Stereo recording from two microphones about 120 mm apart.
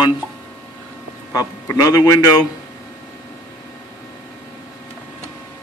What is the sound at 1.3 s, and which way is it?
A man's voice, 30° left (ahead or behind).